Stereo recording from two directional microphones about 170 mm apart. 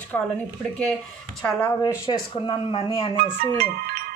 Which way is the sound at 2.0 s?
30° left (ahead or behind).